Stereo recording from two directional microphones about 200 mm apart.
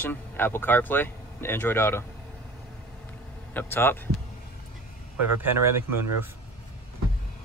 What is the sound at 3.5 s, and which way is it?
Speech, 10° left (ahead or behind).